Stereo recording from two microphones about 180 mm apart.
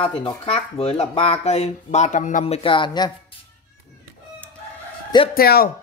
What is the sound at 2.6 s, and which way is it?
Speech, 25° left (ahead or behind).